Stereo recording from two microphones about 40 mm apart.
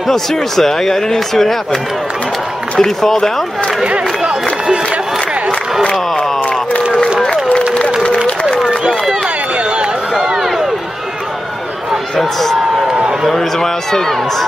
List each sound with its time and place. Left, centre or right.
0.1 s speech: centre
2.8 s speech: centre
8.6 s run: centre
9.6 s a sound: right
10.2 s a sound: centre
12.2 s a man's voice: centre